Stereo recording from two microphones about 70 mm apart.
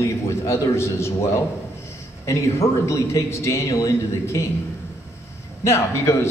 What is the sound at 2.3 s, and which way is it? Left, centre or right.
A man's voice, left.